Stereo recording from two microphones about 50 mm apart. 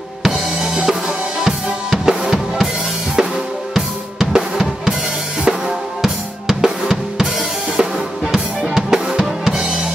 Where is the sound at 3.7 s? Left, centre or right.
Centre.